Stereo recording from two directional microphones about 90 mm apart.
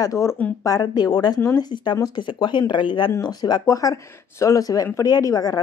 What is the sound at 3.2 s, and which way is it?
Speech, 50° left (ahead or behind).